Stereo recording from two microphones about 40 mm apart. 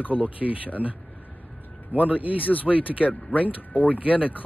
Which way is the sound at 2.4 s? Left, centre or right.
Left.